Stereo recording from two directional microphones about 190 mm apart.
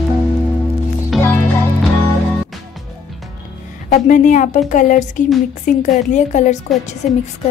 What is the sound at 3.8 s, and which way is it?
A woman's voice, 40° left (ahead or behind).